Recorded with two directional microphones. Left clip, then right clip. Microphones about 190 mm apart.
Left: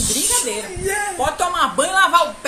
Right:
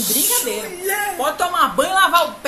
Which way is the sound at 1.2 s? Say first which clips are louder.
Right 1 dB; 5° left (ahead or behind).